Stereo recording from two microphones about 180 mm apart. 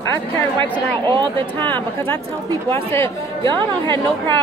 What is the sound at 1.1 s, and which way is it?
Speech, 25° right (ahead or behind).